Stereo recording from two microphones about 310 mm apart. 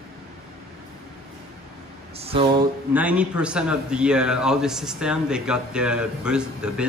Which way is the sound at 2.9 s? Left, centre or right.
Centre.